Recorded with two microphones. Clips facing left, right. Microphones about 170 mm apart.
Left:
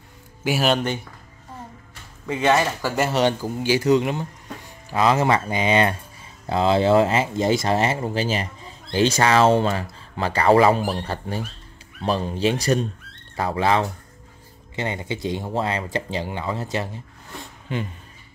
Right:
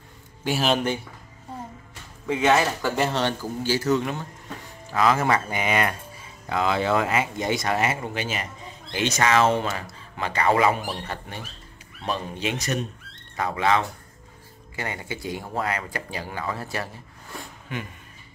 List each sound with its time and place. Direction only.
0.4 s speech: 5° left (ahead or behind)
2.2 s speech: 5° right (ahead or behind); by 17.8 s 30° left (ahead or behind)